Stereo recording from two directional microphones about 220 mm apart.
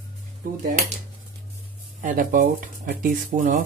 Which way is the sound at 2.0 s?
40° right (ahead or behind).